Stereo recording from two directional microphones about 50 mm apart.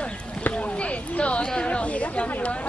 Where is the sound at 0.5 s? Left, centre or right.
Left.